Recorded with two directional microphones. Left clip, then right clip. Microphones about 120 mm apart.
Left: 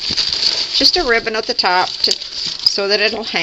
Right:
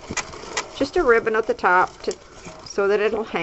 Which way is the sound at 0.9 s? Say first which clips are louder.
Left 2 dB; 35° left (ahead or behind).